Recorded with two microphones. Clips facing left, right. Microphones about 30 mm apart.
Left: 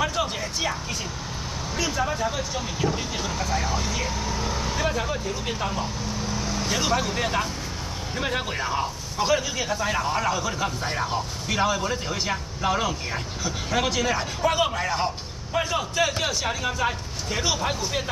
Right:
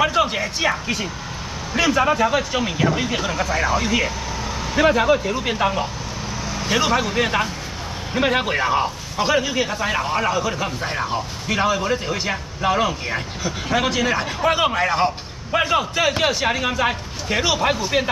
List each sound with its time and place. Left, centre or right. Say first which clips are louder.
0.0 s a sound: right 7 dB; right
0.4 s speech: right 6 dB; right
1.8 s speech: right 9 dB; right
3.4 s speech: right 6 dB; right
4.7 s a man's voice: right 14 dB; right